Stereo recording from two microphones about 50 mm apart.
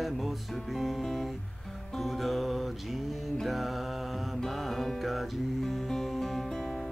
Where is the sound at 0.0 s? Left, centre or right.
Centre.